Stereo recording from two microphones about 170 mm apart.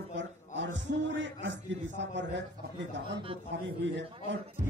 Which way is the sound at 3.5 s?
90° right.